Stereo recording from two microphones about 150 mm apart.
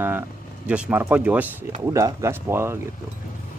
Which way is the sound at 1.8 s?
20° right (ahead or behind).